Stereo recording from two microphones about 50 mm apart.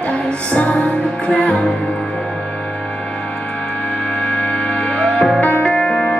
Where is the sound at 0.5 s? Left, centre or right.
Left.